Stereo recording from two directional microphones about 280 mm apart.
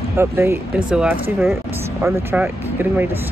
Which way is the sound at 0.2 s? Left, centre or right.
Centre.